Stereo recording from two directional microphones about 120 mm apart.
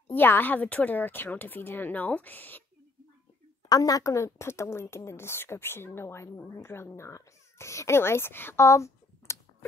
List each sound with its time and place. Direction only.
0.1 s speech: 15° left (ahead or behind)
3.6 s a woman's voice: 30° left (ahead or behind)